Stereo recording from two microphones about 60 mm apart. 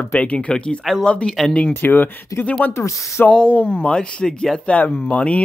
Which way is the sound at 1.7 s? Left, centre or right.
Left.